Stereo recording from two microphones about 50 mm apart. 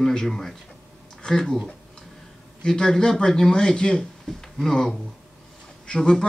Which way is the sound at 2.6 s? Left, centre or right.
Centre.